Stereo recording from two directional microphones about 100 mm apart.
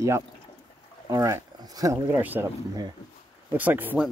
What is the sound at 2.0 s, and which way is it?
Speech, 20° right (ahead or behind).